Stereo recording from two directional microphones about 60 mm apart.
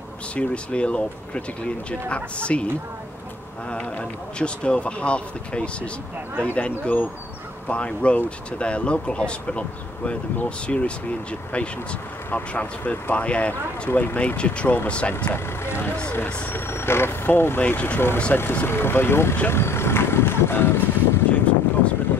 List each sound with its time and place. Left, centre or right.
0.4 s speech: centre
4.4 s speech: centre
12.3 s speech: left
13.8 s speech: left
14.1 s speech: left
15.3 s speech: left
17.6 s speech: left
19.4 s boat: left
21.3 s vehicle: left